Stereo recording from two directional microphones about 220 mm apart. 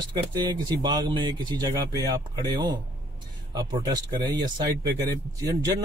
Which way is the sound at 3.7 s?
20° right (ahead or behind).